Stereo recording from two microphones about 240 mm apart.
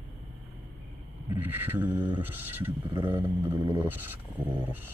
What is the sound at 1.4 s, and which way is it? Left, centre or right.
Speech, centre.